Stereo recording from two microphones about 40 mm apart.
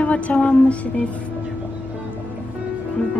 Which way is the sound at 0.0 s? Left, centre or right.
Left.